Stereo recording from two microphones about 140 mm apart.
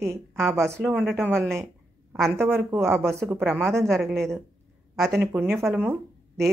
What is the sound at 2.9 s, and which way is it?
Speech, 20° right (ahead or behind).